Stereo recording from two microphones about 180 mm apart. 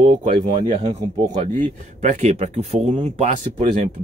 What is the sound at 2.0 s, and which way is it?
Speech, 40° right (ahead or behind).